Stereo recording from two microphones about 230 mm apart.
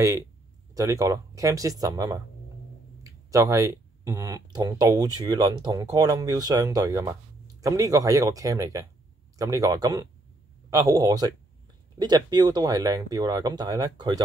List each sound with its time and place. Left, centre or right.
0.7 s speech: centre